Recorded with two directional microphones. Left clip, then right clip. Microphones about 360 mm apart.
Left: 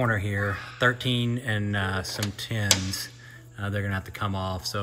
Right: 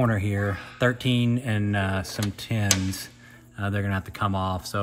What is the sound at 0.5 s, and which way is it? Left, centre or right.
Speech, right.